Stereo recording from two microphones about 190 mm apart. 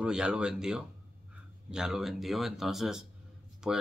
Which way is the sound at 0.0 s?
5° right (ahead or behind).